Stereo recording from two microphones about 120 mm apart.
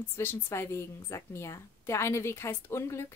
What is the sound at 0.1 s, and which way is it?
A woman's voice, 20° left (ahead or behind).